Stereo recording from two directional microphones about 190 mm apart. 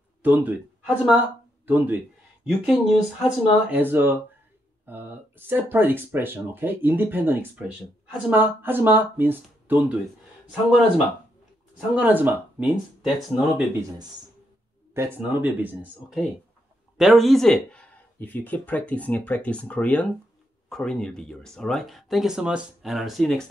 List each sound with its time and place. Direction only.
0.2 s speech: 10° right (ahead or behind)
11.9 s speech: 10° right (ahead or behind)
15.0 s speech: 10° right (ahead or behind)